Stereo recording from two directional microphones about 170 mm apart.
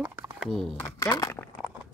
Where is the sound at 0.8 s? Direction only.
20° left (ahead or behind).